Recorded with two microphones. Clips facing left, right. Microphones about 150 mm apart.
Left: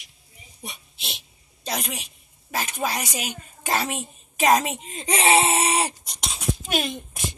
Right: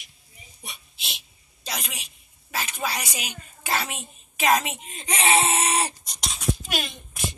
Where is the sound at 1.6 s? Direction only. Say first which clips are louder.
Left 5 dB; 45° left (ahead or behind); by 5.8 s 30° left (ahead or behind).